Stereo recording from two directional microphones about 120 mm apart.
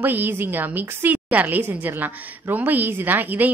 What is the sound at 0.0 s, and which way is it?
A woman's voice, 15° right (ahead or behind).